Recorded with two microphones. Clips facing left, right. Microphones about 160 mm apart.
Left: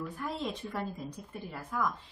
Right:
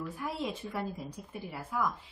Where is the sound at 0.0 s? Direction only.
5° right (ahead or behind).